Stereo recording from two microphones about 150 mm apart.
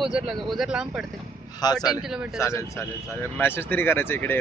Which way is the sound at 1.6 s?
25° left (ahead or behind).